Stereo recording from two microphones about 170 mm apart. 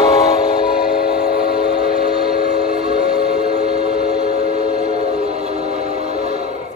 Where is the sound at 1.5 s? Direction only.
35° right (ahead or behind).